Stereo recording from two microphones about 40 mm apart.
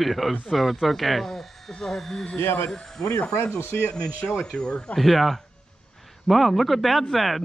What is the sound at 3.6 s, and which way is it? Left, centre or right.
Speech, left.